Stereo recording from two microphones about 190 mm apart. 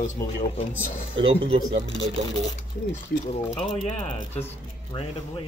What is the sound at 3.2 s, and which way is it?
Speech, 30° left (ahead or behind).